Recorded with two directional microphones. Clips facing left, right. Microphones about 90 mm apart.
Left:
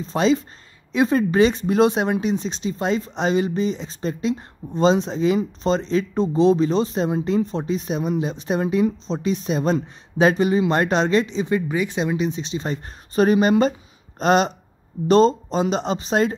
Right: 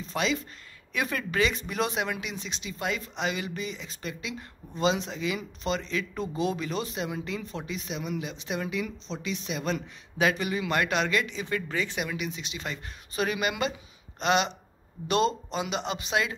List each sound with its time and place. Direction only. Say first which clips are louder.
0.0 s speech: left 10 dB; 30° left (ahead or behind)